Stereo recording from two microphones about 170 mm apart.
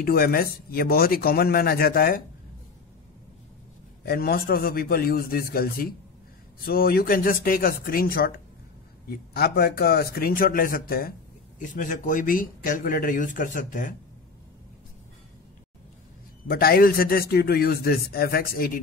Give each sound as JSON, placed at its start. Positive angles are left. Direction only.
{"t": 0.0, "sound": "a man's voice", "side_deg": 65}
{"t": 4.0, "sound": "a man's voice", "side_deg": 65}
{"t": 11.6, "sound": "speech", "side_deg": 50}
{"t": 16.4, "sound": "a man's voice", "side_deg": 60}